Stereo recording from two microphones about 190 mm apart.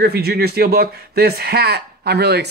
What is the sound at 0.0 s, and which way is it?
Speech, 55° right (ahead or behind).